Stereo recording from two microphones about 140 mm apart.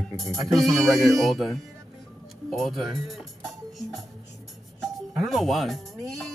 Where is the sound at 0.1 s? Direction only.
Centre (ahead or behind).